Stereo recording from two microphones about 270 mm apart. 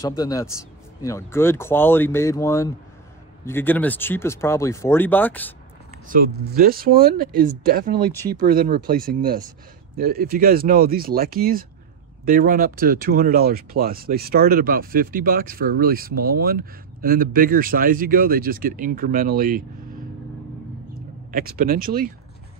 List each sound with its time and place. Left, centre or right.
0.0 s speech: centre
6.0 s speech: right
21.3 s speech: right